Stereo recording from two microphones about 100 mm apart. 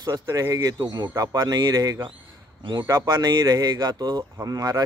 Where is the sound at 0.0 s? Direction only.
35° right (ahead or behind).